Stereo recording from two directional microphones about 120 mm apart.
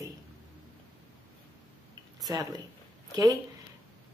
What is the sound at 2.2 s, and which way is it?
Speech, 30° right (ahead or behind).